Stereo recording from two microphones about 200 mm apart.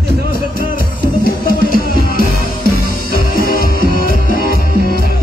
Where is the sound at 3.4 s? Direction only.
50° left (ahead or behind).